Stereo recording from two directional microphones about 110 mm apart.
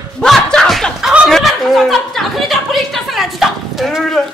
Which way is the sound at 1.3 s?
Centre (ahead or behind).